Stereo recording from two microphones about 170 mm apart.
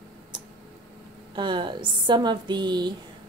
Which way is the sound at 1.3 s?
30° right (ahead or behind).